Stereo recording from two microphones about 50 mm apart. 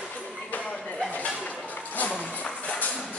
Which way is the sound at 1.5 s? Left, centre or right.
Left.